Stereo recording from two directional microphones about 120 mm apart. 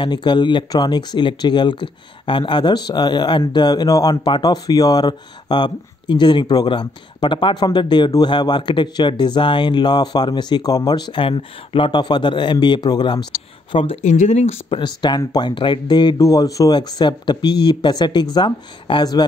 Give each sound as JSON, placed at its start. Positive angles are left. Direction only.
{"t": 0.0, "sound": "speech", "side_deg": 40}
{"t": 14.0, "sound": "speech", "side_deg": 80}
{"t": 14.7, "sound": "speech", "side_deg": 40}